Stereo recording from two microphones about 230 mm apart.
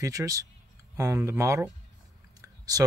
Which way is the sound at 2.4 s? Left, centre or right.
Centre.